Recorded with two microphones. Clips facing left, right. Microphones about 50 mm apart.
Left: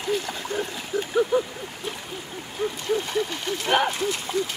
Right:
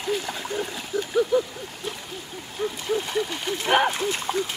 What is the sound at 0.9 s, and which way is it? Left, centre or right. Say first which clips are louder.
Splash: even; centre.